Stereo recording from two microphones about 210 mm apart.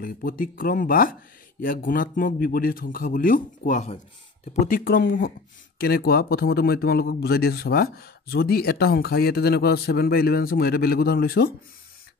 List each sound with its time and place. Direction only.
0.0 s a man's voice: 40° left (ahead or behind)